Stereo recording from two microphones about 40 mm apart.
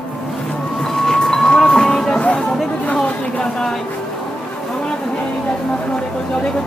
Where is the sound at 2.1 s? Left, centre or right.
Left.